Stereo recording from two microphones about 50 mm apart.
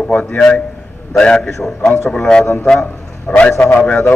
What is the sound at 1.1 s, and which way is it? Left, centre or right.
Speech, centre.